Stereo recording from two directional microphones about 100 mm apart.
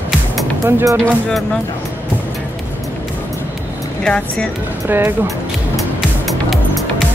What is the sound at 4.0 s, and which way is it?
Speech, 5° left (ahead or behind).